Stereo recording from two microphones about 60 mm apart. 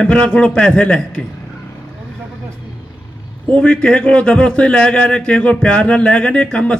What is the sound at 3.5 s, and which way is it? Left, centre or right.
Speech, centre.